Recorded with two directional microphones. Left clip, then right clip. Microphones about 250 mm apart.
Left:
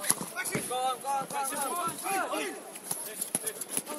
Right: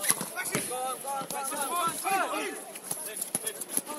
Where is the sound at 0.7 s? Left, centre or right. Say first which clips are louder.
Left 7 dB; left.